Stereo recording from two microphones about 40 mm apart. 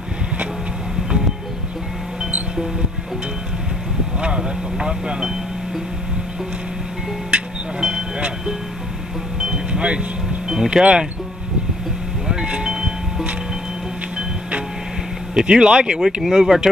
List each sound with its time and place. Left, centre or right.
4.4 s speech: centre
7.2 s music: right
9.4 s wind chime: right
10.5 s speech: centre
12.3 s music: right
15.4 s speech: right